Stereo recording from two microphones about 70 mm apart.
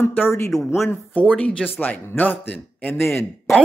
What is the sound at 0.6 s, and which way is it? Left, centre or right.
Speech, left.